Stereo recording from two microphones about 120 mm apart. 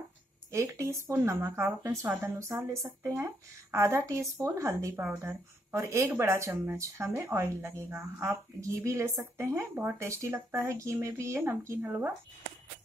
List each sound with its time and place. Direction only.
0.5 s speech: 25° right (ahead or behind)